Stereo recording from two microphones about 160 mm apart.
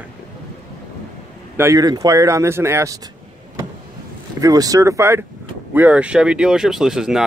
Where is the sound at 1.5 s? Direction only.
20° right (ahead or behind).